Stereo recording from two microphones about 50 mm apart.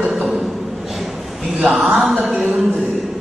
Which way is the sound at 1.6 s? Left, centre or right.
Centre.